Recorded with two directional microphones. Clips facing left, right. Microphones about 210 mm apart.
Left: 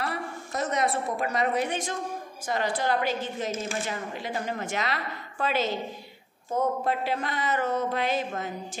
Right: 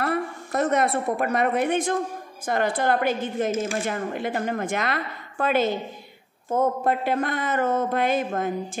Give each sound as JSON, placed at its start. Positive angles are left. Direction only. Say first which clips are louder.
{"t": 0.0, "sound": "a woman's voice", "louder": "right 7 dB", "side_deg": -55}